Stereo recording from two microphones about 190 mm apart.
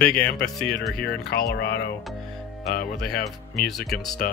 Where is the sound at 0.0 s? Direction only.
5° left (ahead or behind).